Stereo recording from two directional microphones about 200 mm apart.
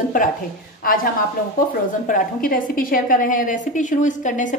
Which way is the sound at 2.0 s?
40° left (ahead or behind).